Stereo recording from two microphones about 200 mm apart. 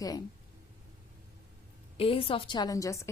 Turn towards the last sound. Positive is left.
turn(degrees=15)  # may be behind; listen again after turning